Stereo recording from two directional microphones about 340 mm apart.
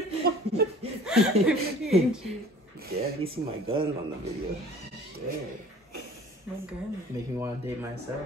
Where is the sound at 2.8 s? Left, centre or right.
Right.